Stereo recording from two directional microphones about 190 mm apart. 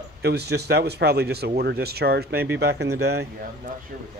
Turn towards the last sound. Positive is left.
turn(degrees=-60)  # may be behind; listen again after turning